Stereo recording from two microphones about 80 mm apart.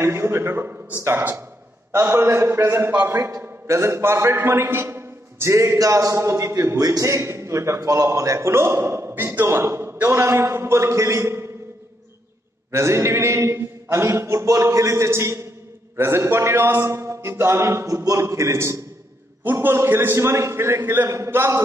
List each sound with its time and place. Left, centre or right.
0.0 s a man's voice: right
6.5 s a man's voice: right
12.7 s a man's voice: right